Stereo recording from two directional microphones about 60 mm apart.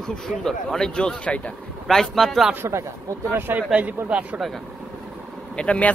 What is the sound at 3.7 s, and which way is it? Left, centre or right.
Speech, right.